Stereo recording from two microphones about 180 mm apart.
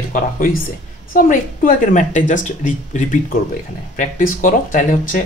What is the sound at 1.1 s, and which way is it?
Speech, 50° left (ahead or behind).